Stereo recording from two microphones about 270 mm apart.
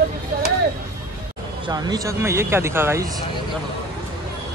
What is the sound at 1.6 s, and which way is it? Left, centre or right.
Speech, centre.